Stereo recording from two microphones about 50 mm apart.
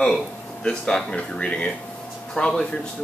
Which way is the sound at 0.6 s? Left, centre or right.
Centre.